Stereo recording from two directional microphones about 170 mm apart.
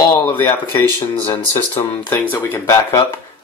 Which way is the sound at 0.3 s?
10° left (ahead or behind).